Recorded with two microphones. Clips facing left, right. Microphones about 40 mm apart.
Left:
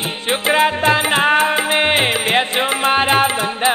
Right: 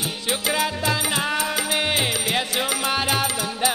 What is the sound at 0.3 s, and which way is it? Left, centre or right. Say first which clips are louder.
Music: left 9 dB; left.